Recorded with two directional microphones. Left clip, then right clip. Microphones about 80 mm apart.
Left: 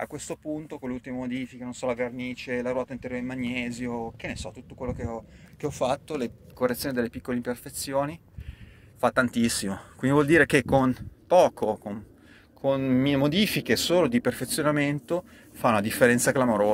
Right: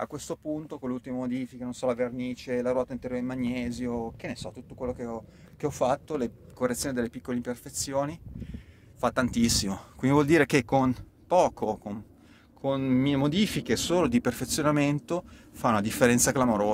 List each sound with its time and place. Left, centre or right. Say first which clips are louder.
0.8 s speech: right 2 dB; right
1.7 s speech: right 1 dB; right
2.1 s a man's voice: left 1 dB; right
2.7 s speech: right 1 dB; right
3.1 s a man's voice: even; right
3.4 s speech: left 1 dB; right
3.8 s speech: even; right
4.2 s speech: left 2 dB; right
4.7 s speech: even; right
5.6 s a man's voice: even; right
6.6 s speech: left 2 dB; centre
6.9 s speech: left 2 dB; centre
13.9 s speech: left 1 dB; right
15.5 s speech: left 3 dB; right